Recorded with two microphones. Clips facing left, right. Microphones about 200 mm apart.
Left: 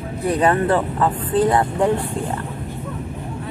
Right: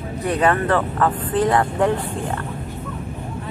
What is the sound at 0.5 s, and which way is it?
Speech, 15° left (ahead or behind).